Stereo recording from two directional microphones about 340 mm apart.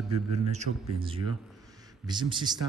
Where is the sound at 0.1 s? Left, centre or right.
Centre.